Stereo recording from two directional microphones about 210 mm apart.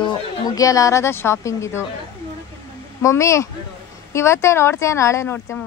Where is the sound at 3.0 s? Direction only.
15° left (ahead or behind).